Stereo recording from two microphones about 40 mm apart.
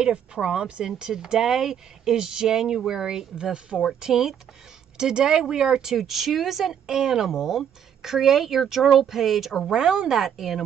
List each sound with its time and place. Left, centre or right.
0.0 s speech: right; by 9.6 s centre
9.7 s speech: centre